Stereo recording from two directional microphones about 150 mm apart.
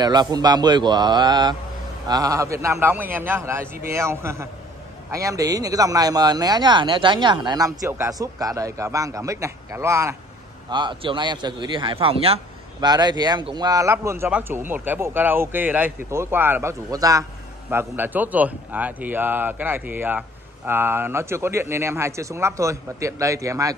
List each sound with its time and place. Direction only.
0.0 s a man's voice: 25° right (ahead or behind)
10.7 s a man's voice: 30° right (ahead or behind)
12.8 s a man's voice: 30° right (ahead or behind)